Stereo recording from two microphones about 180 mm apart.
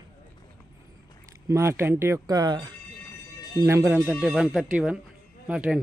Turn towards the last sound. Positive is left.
turn(degrees=-5)  # may be behind; listen again after turning